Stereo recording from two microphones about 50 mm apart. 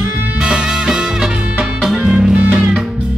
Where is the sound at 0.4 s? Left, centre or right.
Centre.